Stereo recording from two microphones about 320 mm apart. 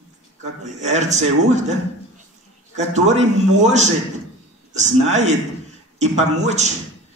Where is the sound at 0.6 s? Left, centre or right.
Right.